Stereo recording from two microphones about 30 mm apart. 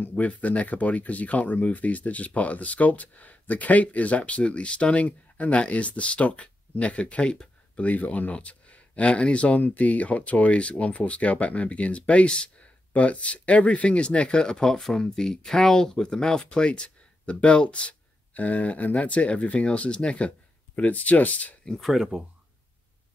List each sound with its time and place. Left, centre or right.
0.2 s speech: left
7.8 s speech: left
14.4 s speech: left
16.4 s speech: left
18.3 s speech: left
18.9 s speech: left
21.9 s speech: centre